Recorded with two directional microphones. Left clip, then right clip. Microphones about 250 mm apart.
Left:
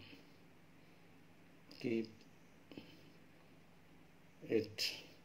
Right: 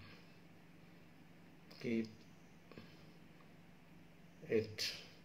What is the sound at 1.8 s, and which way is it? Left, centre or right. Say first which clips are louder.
Speech: left 1 dB; left.